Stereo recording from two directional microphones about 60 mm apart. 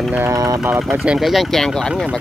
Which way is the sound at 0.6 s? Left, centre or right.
Right.